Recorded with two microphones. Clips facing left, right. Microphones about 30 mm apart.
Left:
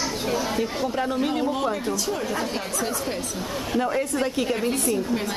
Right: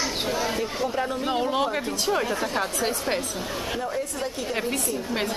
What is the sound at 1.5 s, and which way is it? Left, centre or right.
Speech, right.